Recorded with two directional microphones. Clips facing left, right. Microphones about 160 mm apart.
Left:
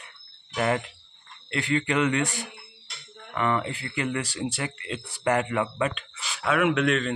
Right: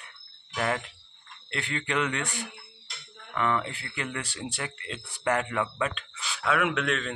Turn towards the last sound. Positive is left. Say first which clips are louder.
# left 5 dB
turn(degrees=0)  # may be behind; listen again after turning